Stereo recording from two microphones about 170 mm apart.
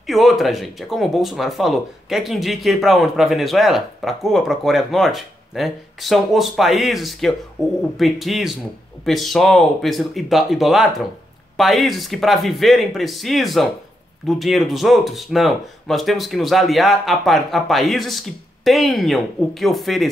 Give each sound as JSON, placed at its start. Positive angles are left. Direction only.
{"t": 0.0, "sound": "speech", "side_deg": 0}